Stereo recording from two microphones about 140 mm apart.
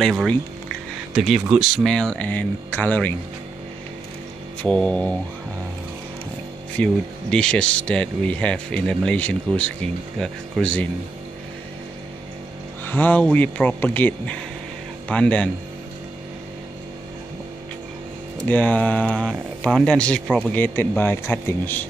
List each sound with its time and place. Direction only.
0.0 s speech: centre (ahead or behind)
4.6 s speech: 5° left (ahead or behind)
6.8 s speech: 5° left (ahead or behind)
12.8 s speech: 15° left (ahead or behind)
18.5 s speech: 10° left (ahead or behind)
20.5 s speech: 15° left (ahead or behind)